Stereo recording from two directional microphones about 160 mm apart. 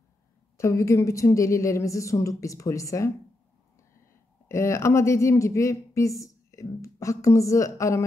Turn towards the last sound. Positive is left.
turn(degrees=20)  # may be behind; listen again after turning